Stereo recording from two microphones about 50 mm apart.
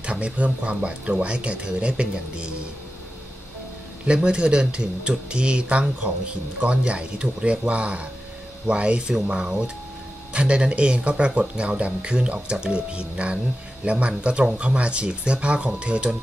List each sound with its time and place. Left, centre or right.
0.0 s speech: right
4.0 s speech: centre
9.1 s speech: centre
10.3 s speech: right